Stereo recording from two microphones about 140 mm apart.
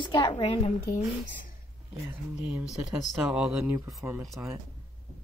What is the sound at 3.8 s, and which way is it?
Speech, 25° right (ahead or behind).